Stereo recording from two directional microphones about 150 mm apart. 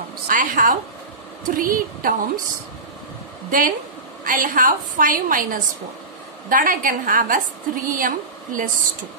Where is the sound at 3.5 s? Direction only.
65° right (ahead or behind).